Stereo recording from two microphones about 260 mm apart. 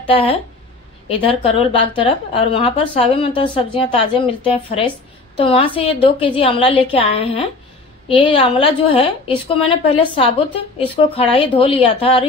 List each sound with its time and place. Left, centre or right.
0.0 s a woman's voice: left